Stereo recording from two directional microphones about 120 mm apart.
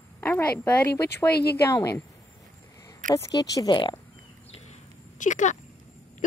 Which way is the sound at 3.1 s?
30° left (ahead or behind).